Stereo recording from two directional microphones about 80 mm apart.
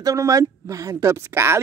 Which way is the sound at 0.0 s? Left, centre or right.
Right.